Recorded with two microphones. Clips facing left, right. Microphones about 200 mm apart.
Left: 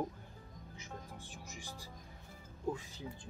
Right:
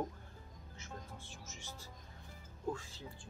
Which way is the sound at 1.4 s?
15° left (ahead or behind).